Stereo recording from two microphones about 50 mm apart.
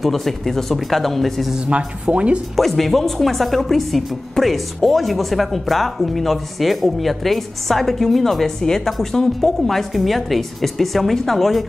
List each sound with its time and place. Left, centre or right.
0.0 s speech: centre
1.7 s speech: right
2.5 s speech: centre